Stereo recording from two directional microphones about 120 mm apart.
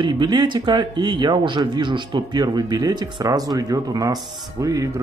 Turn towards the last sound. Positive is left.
turn(degrees=-30)  # may be behind; listen again after turning